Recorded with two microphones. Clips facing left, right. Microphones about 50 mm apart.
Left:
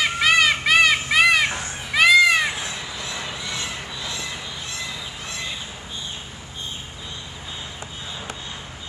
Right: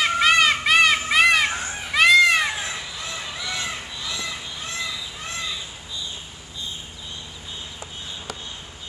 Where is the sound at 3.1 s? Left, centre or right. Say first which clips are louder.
Right 1 dB; left.